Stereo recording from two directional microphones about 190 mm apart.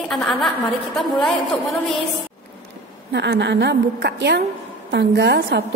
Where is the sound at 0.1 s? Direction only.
Centre (ahead or behind).